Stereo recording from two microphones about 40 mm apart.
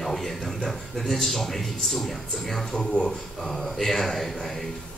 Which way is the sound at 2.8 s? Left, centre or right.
Centre.